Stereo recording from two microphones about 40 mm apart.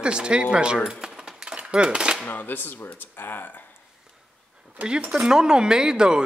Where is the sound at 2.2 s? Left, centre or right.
Left.